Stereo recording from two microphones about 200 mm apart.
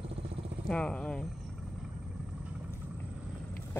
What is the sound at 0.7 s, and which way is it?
Vehicle, 5° left (ahead or behind).